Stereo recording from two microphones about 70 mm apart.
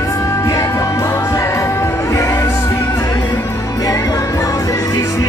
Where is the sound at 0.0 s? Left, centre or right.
Left.